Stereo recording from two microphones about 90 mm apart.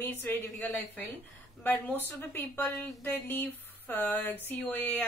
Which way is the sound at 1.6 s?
20° left (ahead or behind).